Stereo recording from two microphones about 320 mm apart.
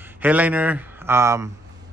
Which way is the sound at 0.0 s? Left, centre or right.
Centre.